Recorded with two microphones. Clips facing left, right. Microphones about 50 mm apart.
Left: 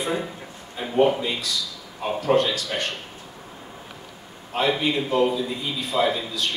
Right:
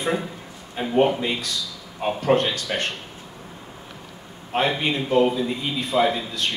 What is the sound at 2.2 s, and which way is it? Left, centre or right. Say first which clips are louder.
Speech: even; right.